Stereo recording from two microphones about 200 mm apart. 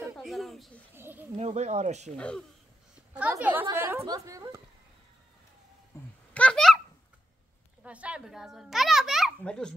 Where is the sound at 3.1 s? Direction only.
5° right (ahead or behind).